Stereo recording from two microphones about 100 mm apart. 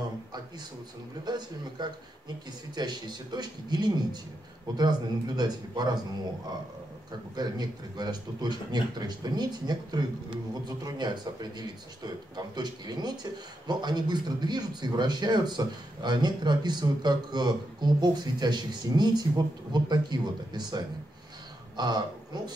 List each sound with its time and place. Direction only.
1.2 s speech: 45° right (ahead or behind)
7.3 s speech: 45° right (ahead or behind)